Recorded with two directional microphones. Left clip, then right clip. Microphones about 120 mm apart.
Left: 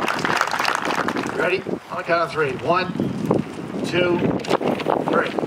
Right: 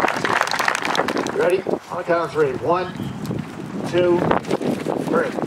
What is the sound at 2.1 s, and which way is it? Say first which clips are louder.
Speech: right 1 dB; 40° left (ahead or behind).